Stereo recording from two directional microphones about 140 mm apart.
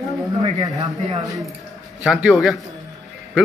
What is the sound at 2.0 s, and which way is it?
Speech, 5° right (ahead or behind).